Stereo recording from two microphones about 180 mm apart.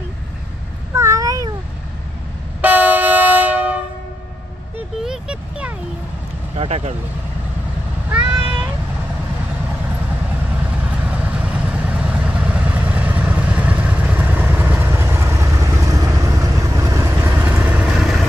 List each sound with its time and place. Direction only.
0.9 s cat: 15° right (ahead or behind)
2.6 s train: 10° right (ahead or behind)
5.0 s vehicle: 5° right (ahead or behind)
6.5 s speech: 35° right (ahead or behind)
8.1 s meow: 10° right (ahead or behind)
11.1 s vehicle: 5° right (ahead or behind)